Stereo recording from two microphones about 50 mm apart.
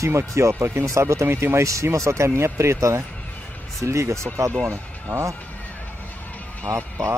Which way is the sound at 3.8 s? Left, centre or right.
Right.